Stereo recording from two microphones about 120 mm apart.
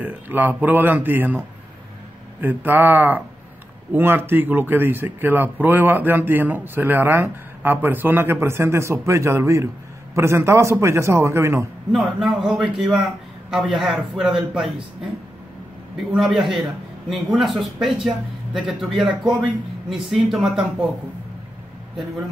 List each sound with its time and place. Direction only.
0.0 s speech: 15° right (ahead or behind)
2.4 s a man's voice: 15° right (ahead or behind)
11.9 s speech: centre (ahead or behind)
16.1 s speech: centre (ahead or behind)